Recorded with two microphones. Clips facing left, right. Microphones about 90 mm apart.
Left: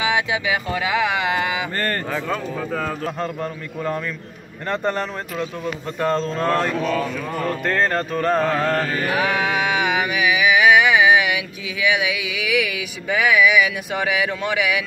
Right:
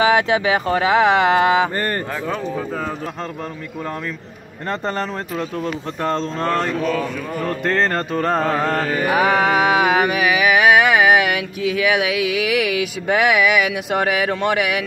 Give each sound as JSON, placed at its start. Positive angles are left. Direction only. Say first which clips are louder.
{"t": 0.0, "sound": "speech", "louder": "right 6 dB", "side_deg": -45}
{"t": 4.6, "sound": "music", "louder": "even", "side_deg": -25}
{"t": 6.7, "sound": "mantra", "louder": "right 1 dB", "side_deg": 0}
{"t": 7.6, "sound": "music", "louder": "right 2 dB", "side_deg": -25}
{"t": 9.2, "sound": "music", "louder": "right 7 dB", "side_deg": -40}
{"t": 12.0, "sound": "speech", "louder": "right 5 dB", "side_deg": -55}